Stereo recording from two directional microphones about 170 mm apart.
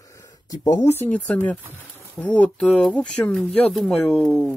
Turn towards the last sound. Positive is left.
turn(degrees=5)  # may be behind; listen again after turning